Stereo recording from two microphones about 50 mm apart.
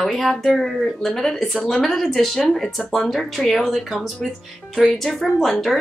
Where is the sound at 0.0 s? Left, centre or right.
Centre.